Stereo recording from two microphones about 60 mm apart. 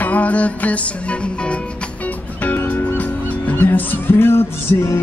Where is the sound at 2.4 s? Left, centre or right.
Left.